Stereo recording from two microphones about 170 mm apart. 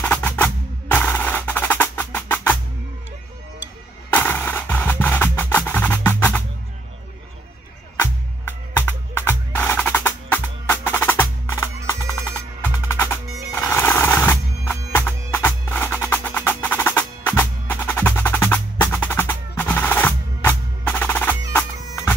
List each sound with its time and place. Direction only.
0.0 s percussion: 10° left (ahead or behind)
4.1 s music: 10° left (ahead or behind)
8.0 s music: 15° left (ahead or behind)
9.7 s percussion: 10° left (ahead or behind)
12.6 s music: 15° left (ahead or behind)
13.5 s bagpipes: 15° left (ahead or behind)